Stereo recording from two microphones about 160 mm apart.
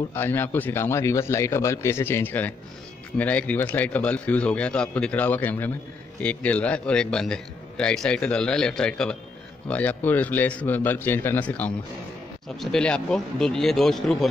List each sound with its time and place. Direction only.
0.1 s a man's voice: 15° left (ahead or behind)